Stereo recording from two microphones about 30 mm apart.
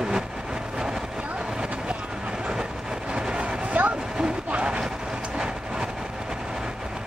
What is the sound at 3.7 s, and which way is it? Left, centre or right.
Vehicle, right.